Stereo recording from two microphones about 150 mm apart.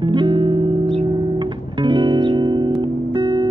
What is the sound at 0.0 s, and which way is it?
Music, 35° right (ahead or behind).